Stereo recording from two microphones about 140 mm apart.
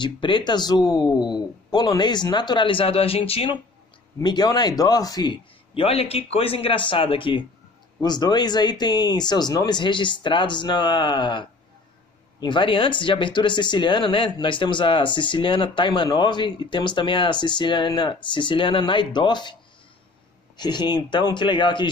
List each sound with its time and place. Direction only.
0.0 s speech: 35° left (ahead or behind)
4.2 s speech: 30° left (ahead or behind)
20.5 s speech: 30° left (ahead or behind)